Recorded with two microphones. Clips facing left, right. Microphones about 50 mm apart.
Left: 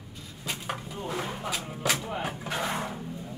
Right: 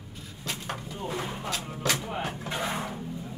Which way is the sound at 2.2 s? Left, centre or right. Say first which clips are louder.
Even; centre.